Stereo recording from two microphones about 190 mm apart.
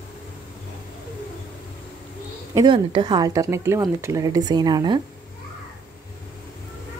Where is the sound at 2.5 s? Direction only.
25° right (ahead or behind).